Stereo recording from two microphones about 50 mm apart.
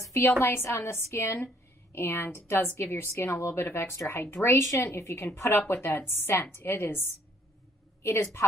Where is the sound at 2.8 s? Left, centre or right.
Left.